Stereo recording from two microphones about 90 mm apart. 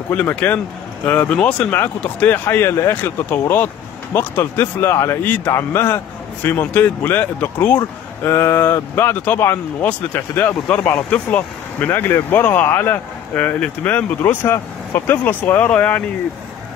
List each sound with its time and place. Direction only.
0.1 s speech: 20° left (ahead or behind)
5.2 s speech: 20° left (ahead or behind)